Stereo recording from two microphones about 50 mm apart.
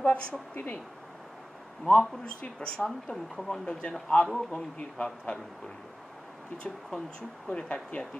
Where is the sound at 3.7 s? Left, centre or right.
Left.